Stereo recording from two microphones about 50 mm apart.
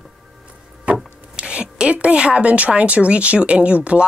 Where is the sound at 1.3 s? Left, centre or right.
Centre.